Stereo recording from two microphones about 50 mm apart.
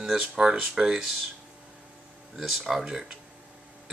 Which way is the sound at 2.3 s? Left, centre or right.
Centre.